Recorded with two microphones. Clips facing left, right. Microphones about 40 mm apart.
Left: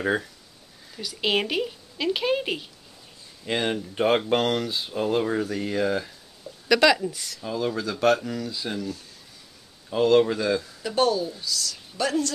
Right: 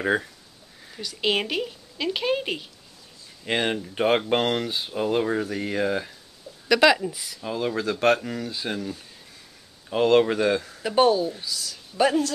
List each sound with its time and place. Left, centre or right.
0.9 s speech: centre
3.4 s speech: right
7.5 s speech: right
9.8 s speech: right
10.8 s speech: right